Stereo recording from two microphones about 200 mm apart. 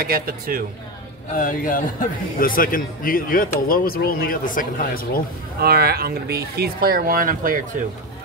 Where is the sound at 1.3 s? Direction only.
45° left (ahead or behind).